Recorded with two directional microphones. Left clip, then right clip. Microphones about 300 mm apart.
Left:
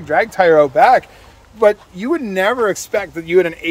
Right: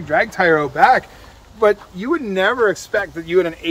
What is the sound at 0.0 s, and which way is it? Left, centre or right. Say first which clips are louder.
Speech: left 3 dB; centre.